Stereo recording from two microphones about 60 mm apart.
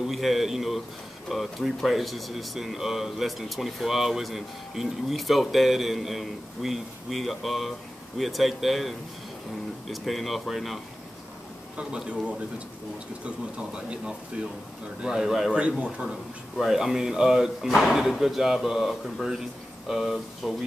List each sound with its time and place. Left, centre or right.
0.0 s speech: centre
11.7 s speech: centre
13.2 s speech: centre
16.5 s speech: centre